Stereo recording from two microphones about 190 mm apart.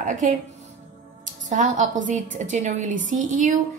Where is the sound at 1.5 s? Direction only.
40° right (ahead or behind).